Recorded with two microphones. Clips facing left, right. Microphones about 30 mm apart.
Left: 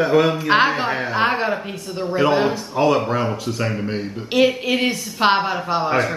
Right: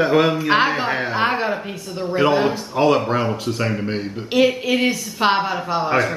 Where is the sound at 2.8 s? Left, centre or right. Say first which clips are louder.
Right 1 dB; centre.